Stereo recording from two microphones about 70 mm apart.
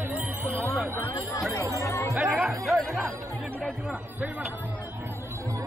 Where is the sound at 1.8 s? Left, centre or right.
Left.